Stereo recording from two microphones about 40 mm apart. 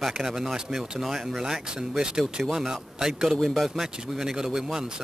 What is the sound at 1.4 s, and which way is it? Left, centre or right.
Speech, centre.